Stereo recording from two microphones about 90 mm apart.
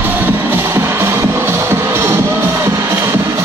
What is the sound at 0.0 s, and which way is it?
Music, 20° right (ahead or behind).